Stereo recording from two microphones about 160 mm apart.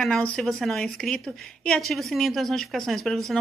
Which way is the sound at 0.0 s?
5° left (ahead or behind).